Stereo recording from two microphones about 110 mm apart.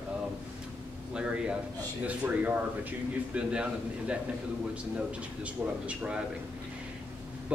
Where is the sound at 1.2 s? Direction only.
10° right (ahead or behind).